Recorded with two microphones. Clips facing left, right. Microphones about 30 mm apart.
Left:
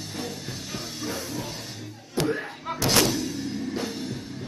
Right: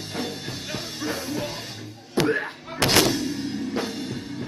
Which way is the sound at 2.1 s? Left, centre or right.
Right.